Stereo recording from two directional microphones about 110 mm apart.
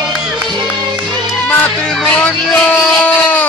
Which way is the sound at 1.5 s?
15° left (ahead or behind).